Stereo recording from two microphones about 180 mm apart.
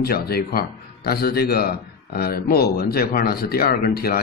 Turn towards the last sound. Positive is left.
turn(degrees=55)  # may be behind; listen again after turning